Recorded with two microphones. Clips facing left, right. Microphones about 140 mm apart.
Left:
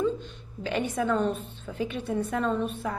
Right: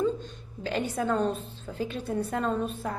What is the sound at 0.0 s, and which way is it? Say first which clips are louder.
A woman's voice: even; 40° right (ahead or behind).